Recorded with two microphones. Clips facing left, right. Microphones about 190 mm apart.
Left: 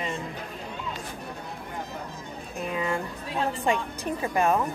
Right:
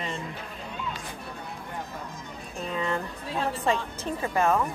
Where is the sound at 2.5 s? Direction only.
10° left (ahead or behind).